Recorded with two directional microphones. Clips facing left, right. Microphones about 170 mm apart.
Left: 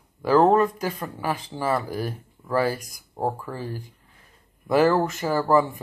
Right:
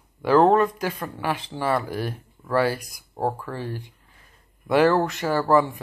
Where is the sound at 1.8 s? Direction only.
40° left (ahead or behind).